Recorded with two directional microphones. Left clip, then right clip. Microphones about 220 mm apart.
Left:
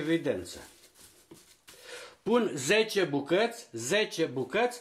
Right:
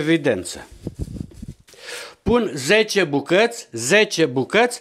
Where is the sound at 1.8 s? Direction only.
35° right (ahead or behind).